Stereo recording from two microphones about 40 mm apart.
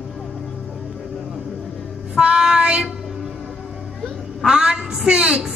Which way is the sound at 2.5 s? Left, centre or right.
Right.